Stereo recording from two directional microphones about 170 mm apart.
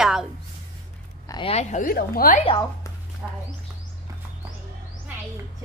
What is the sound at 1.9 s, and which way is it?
Speech, 60° left (ahead or behind).